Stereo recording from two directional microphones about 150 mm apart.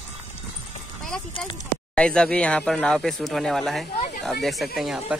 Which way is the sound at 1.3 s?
30° left (ahead or behind).